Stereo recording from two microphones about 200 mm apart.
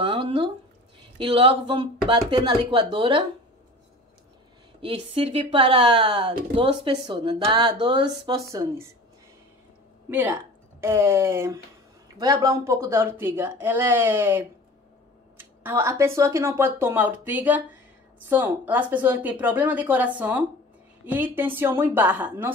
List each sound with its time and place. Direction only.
0.0 s a sound: 25° right (ahead or behind)
1.1 s speech: 25° right (ahead or behind)
4.8 s speech: 25° right (ahead or behind)
10.0 s speech: 10° right (ahead or behind)